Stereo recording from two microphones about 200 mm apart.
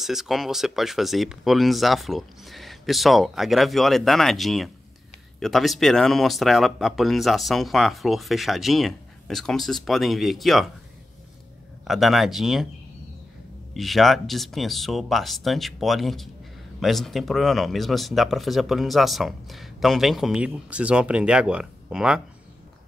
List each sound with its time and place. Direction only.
0.0 s speech: centre (ahead or behind)
11.9 s speech: centre (ahead or behind)
13.7 s speech: centre (ahead or behind)